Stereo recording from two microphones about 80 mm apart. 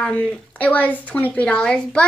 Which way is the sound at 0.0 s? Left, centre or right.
Centre.